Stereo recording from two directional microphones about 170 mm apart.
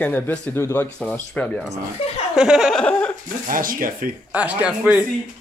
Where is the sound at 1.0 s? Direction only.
5° left (ahead or behind).